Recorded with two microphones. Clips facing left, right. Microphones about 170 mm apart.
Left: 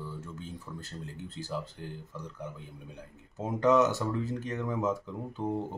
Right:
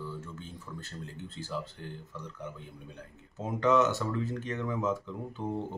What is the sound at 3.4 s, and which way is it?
Speech, 10° left (ahead or behind).